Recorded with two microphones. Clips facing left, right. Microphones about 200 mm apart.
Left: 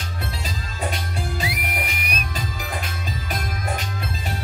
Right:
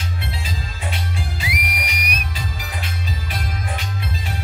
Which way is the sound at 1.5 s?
25° left (ahead or behind).